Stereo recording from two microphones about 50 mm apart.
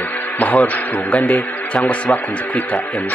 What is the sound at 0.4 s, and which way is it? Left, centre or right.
A man's voice, left.